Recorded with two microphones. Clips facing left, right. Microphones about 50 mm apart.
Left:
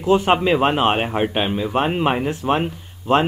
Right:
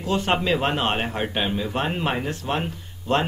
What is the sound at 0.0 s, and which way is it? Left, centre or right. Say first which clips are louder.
Speech: left 7 dB; centre.